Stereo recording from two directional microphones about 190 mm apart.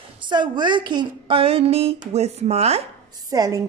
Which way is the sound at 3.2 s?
20° right (ahead or behind).